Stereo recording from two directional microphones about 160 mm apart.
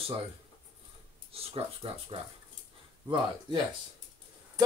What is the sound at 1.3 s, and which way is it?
Speech, 35° right (ahead or behind).